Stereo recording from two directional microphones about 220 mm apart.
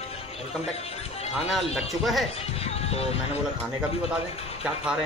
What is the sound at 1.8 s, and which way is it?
Speech, centre (ahead or behind).